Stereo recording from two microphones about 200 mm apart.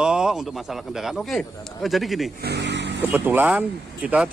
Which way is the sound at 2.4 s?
55° right (ahead or behind).